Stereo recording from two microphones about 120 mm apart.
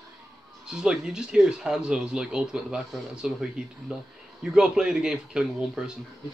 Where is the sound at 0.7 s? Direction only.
5° right (ahead or behind).